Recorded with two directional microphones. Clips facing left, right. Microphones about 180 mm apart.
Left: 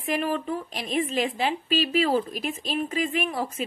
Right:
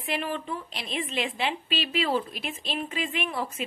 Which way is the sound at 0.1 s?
40° left (ahead or behind).